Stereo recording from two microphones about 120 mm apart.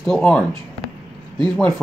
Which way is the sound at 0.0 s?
10° left (ahead or behind).